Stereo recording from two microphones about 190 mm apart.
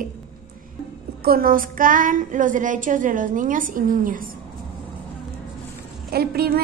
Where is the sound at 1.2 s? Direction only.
50° right (ahead or behind).